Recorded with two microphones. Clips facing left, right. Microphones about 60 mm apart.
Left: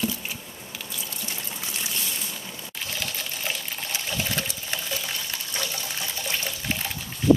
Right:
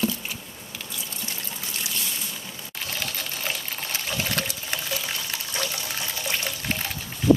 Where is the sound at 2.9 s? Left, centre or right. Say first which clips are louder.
Right 1 dB; centre.